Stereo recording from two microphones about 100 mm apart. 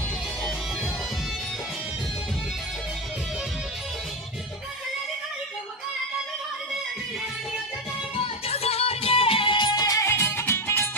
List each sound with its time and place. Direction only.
8.2 s music: 85° left; by 10.9 s 25° left (ahead or behind)